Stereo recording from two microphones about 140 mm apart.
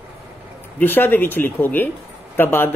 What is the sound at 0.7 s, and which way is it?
Speech, 15° left (ahead or behind).